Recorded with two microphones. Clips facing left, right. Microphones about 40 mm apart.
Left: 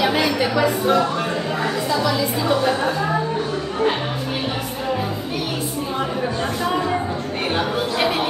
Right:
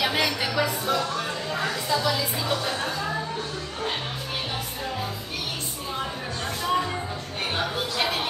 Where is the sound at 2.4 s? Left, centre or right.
Left.